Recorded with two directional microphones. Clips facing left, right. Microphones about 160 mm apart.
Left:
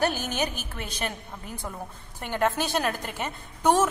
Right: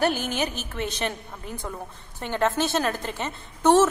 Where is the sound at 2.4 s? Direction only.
15° left (ahead or behind).